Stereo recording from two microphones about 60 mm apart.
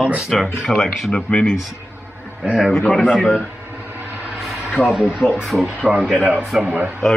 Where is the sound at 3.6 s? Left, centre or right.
Right.